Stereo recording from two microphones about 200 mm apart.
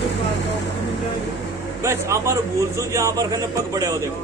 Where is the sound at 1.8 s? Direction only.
15° right (ahead or behind).